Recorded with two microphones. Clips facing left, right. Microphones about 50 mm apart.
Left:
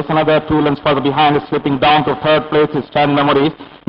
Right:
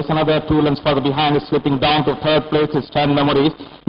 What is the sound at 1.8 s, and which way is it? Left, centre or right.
Speech, left.